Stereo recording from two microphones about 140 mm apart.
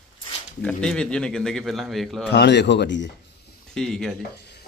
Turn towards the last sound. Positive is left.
turn(degrees=5)  # may be behind; listen again after turning